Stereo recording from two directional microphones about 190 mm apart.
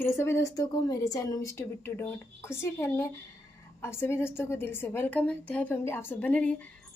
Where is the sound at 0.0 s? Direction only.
15° left (ahead or behind).